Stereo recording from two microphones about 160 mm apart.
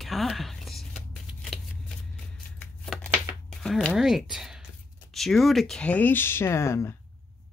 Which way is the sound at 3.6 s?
5° left (ahead or behind).